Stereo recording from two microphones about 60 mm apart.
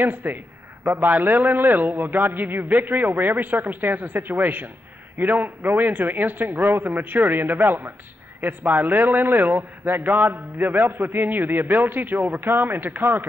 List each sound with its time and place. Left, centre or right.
0.0 s a man's voice: right